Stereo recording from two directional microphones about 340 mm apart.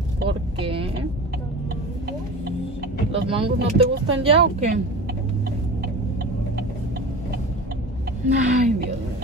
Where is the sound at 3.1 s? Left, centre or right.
Centre.